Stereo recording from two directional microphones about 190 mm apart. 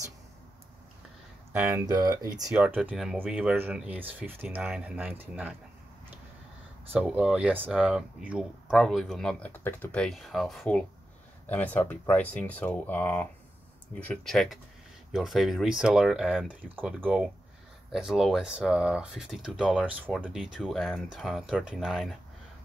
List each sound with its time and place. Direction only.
1.5 s speech: 10° right (ahead or behind)
2.5 s speech: 5° right (ahead or behind)
6.9 s speech: 10° right (ahead or behind)